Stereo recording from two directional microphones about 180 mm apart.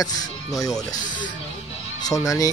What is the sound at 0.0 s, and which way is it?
Speech, 20° left (ahead or behind).